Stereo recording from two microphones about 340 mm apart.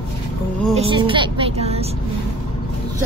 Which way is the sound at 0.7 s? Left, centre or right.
Centre.